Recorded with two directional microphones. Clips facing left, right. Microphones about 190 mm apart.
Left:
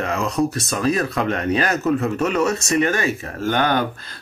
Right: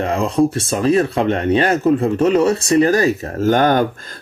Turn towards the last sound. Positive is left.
turn(degrees=-45)  # may be behind; listen again after turning